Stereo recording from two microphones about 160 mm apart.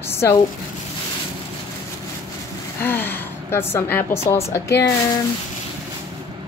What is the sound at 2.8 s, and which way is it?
A woman's voice, 15° left (ahead or behind).